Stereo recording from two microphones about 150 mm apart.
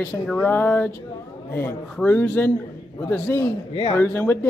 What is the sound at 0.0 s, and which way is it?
A man's voice, 10° left (ahead or behind).